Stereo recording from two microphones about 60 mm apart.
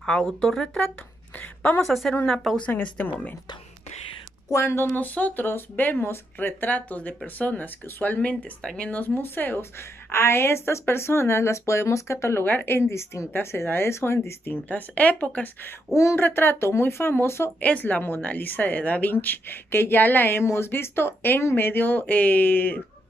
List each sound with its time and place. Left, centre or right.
0.2 s a woman's voice: centre
2.8 s speech: left
4.6 s a woman's voice: left
10.1 s speech: left
12.4 s speech: left
14.5 s a woman's voice: left
17.6 s a woman's voice: left